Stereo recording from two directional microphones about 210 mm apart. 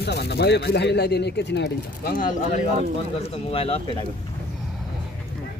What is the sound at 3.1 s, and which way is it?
Speech, 30° left (ahead or behind).